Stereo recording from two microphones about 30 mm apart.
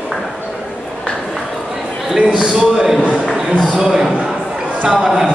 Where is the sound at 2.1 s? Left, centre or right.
Right.